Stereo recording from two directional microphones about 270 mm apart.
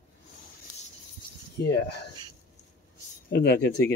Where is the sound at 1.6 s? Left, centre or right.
Left.